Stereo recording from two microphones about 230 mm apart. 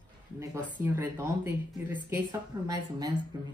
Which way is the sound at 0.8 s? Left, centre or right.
Centre.